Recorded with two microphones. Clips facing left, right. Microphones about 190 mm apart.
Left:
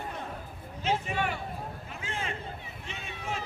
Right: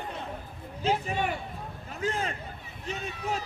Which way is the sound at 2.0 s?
40° right (ahead or behind).